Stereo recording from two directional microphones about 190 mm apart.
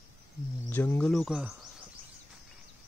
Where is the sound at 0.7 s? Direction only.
10° left (ahead or behind).